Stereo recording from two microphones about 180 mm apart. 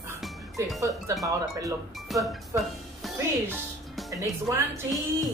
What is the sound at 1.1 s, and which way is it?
Speech, 15° right (ahead or behind).